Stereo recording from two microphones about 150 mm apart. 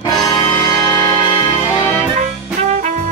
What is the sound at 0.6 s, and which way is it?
Music, 20° left (ahead or behind).